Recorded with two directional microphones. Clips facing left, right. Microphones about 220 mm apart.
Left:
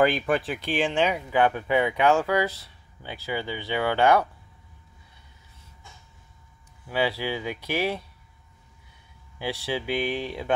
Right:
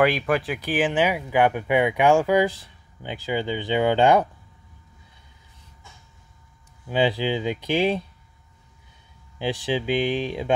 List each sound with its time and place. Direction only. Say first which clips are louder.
0.0 s speech: right 1 dB; centre (ahead or behind); by 4.3 s 20° right (ahead or behind)
6.9 s speech: right 4 dB; 20° right (ahead or behind)
9.4 s speech: right 4 dB; 15° right (ahead or behind)